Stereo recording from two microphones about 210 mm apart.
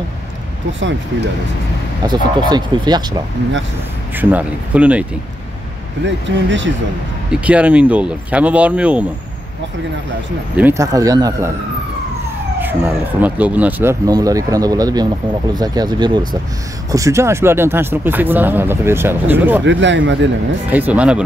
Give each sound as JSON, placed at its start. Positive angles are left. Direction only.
{"t": 2.0, "sound": "speech", "side_deg": -20}
{"t": 4.2, "sound": "speech", "side_deg": -10}
{"t": 6.0, "sound": "speech", "side_deg": -60}
{"t": 7.3, "sound": "speech", "side_deg": -5}
{"t": 10.5, "sound": "speech", "side_deg": -10}
{"t": 12.5, "sound": "speech", "side_deg": -10}
{"t": 19.6, "sound": "speech", "side_deg": -60}
{"t": 20.7, "sound": "speech", "side_deg": -5}